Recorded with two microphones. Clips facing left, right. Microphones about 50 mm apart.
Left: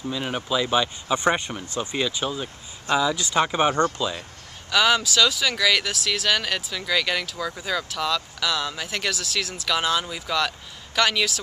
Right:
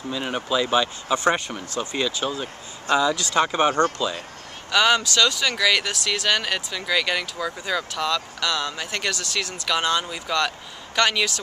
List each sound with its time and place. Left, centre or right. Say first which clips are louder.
0.1 s speech: right 2 dB; centre
1.1 s speech: right 1 dB; centre